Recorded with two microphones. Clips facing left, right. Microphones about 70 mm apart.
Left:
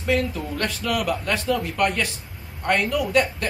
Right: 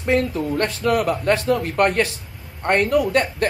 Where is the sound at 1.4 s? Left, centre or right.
Right.